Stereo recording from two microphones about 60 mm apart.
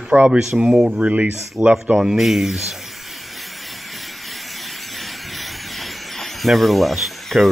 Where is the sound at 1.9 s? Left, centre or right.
Centre.